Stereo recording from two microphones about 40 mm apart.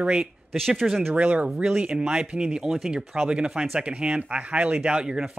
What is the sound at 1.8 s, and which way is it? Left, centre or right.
A man's voice, centre.